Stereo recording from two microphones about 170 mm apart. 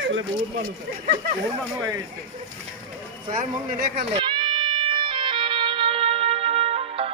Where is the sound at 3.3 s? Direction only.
55° right (ahead or behind).